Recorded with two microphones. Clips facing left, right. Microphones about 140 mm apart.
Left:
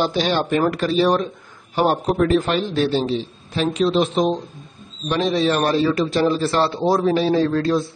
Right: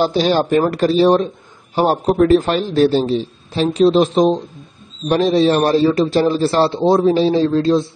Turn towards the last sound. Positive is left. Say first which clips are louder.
# right 4 dB
turn(degrees=-25)  # may be behind; listen again after turning